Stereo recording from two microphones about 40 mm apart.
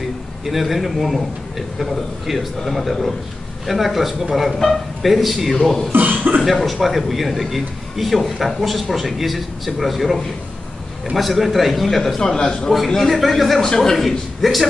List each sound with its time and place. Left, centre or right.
0.5 s a man's voice: centre
5.9 s speech: right
6.4 s a man's voice: centre
12.2 s a man's voice: centre